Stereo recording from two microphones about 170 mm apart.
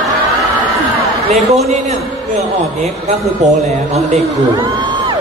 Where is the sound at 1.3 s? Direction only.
Centre (ahead or behind).